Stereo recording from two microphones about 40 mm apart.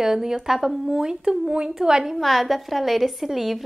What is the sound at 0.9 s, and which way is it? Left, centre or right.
Speech, centre.